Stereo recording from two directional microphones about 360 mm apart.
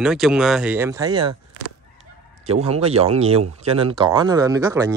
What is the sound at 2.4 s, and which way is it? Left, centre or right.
Speech, centre.